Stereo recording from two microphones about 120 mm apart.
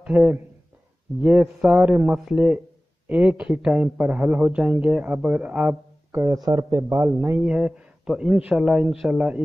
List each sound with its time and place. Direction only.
0.0 s a man's voice: 5° right (ahead or behind)
6.1 s speech: 30° right (ahead or behind)
7.3 s speech: 5° right (ahead or behind)